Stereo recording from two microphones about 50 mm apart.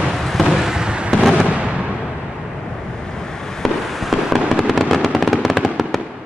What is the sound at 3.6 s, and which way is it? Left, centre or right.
Fireworks, centre.